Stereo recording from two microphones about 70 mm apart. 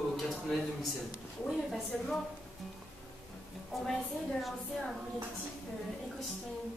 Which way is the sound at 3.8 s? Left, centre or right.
Centre.